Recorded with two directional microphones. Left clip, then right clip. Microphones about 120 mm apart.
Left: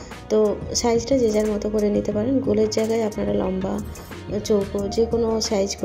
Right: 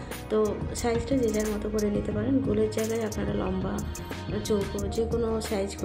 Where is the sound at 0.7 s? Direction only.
35° left (ahead or behind).